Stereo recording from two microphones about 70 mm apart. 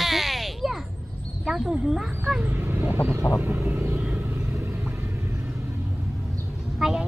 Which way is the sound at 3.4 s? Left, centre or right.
Right.